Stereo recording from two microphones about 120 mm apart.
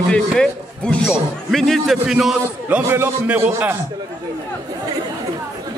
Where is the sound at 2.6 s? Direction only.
20° right (ahead or behind).